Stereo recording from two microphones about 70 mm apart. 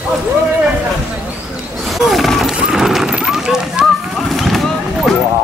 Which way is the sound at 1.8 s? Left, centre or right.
Centre.